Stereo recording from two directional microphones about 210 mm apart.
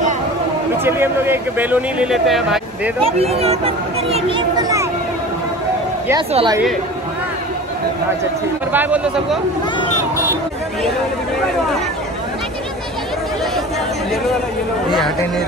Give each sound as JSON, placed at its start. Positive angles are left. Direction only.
{"t": 0.8, "sound": "speech", "side_deg": -10}
{"t": 3.0, "sound": "speech", "side_deg": -30}
{"t": 6.3, "sound": "speech", "side_deg": -20}
{"t": 8.7, "sound": "speech", "side_deg": -5}